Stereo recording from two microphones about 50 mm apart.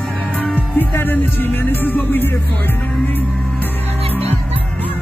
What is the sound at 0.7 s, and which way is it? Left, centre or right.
Speech, left.